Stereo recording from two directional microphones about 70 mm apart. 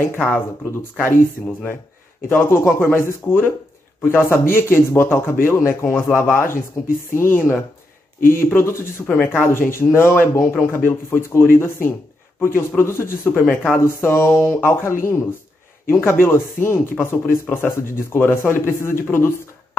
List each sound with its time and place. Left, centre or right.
0.0 s a man's voice: left
2.2 s a man's voice: left